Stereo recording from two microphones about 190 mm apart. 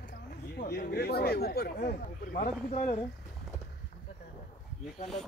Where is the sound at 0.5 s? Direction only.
50° left (ahead or behind).